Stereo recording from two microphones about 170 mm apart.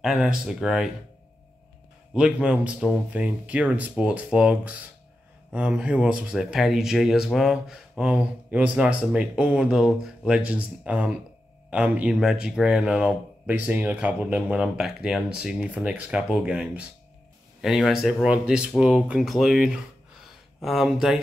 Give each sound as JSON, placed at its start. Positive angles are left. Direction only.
{"t": 0.0, "sound": "speech", "side_deg": -5}
{"t": 2.1, "sound": "speech", "side_deg": -5}